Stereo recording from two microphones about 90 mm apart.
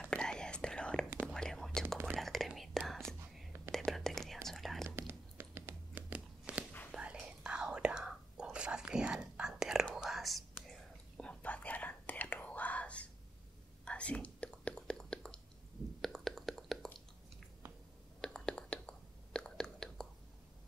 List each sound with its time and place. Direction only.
0.0 s whispering: 10° left (ahead or behind)
4.8 s tearing: 25° right (ahead or behind)
6.9 s whispering: 10° right (ahead or behind)
11.2 s whispering: 15° left (ahead or behind)
16.0 s a sound: 5° left (ahead or behind)
18.2 s whispering: 10° left (ahead or behind)